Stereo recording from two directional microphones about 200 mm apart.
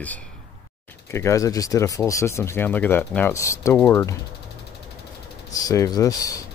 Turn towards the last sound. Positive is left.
turn(degrees=15)  # may be behind; listen again after turning